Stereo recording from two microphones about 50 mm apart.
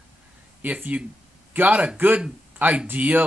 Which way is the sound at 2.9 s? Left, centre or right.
Right.